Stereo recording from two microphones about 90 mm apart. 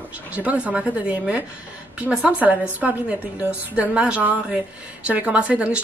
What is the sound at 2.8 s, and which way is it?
A woman's voice, 15° right (ahead or behind).